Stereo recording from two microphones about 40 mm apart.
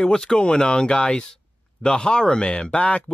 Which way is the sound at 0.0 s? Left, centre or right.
Centre.